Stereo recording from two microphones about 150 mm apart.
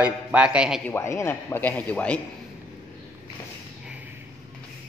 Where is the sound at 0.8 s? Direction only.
15° left (ahead or behind).